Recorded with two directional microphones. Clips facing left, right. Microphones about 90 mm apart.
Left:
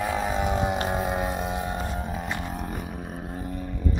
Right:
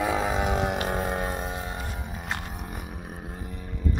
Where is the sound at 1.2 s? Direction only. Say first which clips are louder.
Left 3 dB; 35° right (ahead or behind).